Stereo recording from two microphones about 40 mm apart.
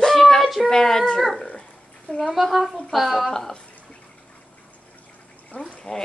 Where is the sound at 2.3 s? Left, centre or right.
Centre.